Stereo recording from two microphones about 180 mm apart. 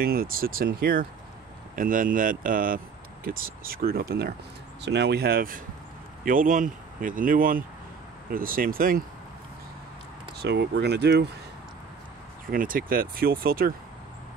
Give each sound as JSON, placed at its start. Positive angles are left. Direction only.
{"t": 0.0, "sound": "speech", "side_deg": -55}
{"t": 4.8, "sound": "speech", "side_deg": -70}
{"t": 10.3, "sound": "speech", "side_deg": -70}
{"t": 12.4, "sound": "speech", "side_deg": -50}